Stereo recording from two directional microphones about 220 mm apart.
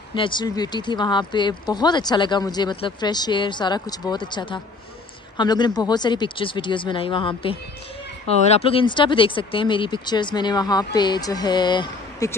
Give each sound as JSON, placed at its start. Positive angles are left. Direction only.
{"t": 0.1, "sound": "speech", "side_deg": 20}
{"t": 8.5, "sound": "speech", "side_deg": 25}